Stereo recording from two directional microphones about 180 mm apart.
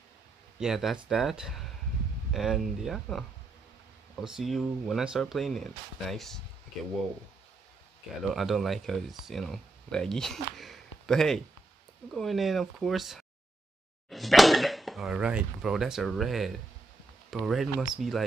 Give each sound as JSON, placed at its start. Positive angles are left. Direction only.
{"t": 0.6, "sound": "speech", "side_deg": 0}
{"t": 8.2, "sound": "speech", "side_deg": 0}